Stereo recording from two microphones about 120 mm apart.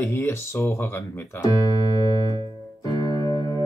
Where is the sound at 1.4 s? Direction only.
35° left (ahead or behind).